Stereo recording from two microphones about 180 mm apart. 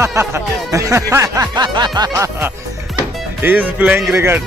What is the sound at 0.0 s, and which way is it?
Speech, 15° right (ahead or behind).